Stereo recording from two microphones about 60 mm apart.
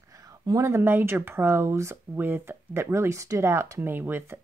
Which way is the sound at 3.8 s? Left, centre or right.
Right.